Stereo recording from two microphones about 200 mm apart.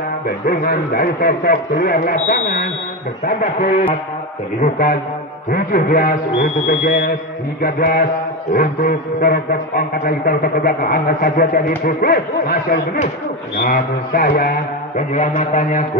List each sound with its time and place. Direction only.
0.5 s a man's voice: 45° left (ahead or behind)